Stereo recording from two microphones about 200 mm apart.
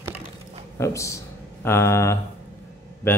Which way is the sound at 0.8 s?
15° left (ahead or behind).